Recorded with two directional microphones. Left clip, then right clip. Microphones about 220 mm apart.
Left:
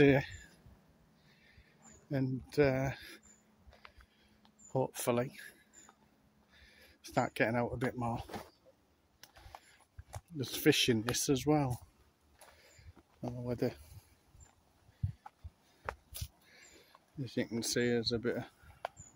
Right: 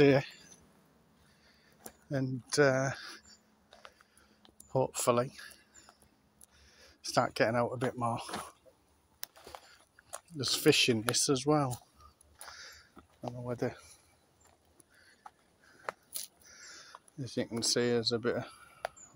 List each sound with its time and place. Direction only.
0.0 s speech: 10° left (ahead or behind)
2.2 s speech: 5° left (ahead or behind)
4.7 s speech: 5° left (ahead or behind)
9.2 s a sound: 55° right (ahead or behind)
10.3 s speech: 10° left (ahead or behind)
13.5 s speech: 25° left (ahead or behind)
15.8 s a sound: 50° right (ahead or behind)
16.5 s a sound: 15° left (ahead or behind)
17.7 s speech: 5° left (ahead or behind)